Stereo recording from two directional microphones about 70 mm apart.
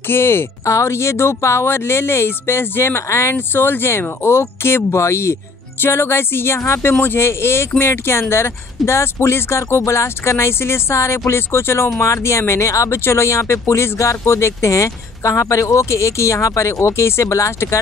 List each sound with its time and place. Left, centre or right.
0.0 s speech: left